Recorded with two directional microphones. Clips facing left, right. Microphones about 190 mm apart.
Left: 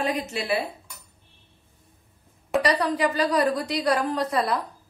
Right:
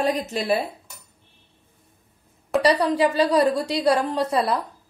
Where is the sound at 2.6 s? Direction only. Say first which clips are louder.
Right 4 dB; 30° right (ahead or behind).